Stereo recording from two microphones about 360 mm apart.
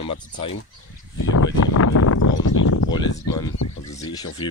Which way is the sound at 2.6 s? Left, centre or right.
Left.